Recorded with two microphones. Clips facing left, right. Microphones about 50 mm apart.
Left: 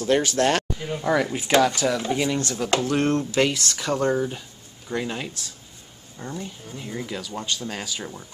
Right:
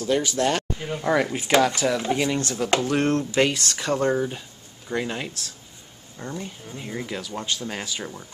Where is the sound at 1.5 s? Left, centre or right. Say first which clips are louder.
Even; centre.